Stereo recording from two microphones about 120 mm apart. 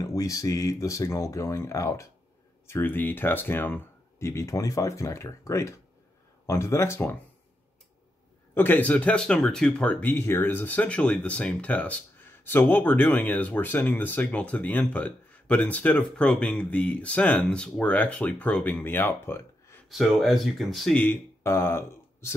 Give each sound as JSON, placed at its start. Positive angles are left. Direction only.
{"t": 0.0, "sound": "speech", "side_deg": 30}
{"t": 8.5, "sound": "speech", "side_deg": 15}
{"t": 19.9, "sound": "speech", "side_deg": 0}
{"t": 20.9, "sound": "speech", "side_deg": 15}